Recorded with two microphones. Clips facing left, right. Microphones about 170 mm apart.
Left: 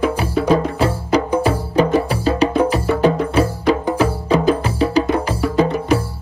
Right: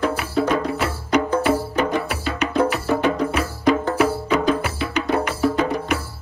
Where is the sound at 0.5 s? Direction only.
35° left (ahead or behind).